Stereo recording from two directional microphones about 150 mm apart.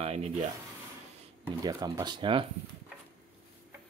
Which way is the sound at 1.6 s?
25° right (ahead or behind).